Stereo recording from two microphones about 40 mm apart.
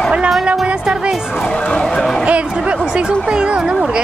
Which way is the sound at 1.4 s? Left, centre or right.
Centre.